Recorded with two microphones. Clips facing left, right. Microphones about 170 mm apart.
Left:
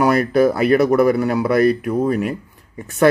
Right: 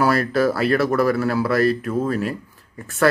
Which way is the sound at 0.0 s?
15° left (ahead or behind).